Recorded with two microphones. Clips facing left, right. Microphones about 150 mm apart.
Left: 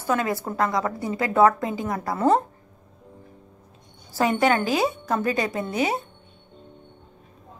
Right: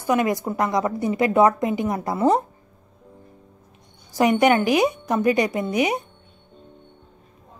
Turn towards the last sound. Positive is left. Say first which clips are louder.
# right 3 dB
turn(degrees=-15)  # may be behind; listen again after turning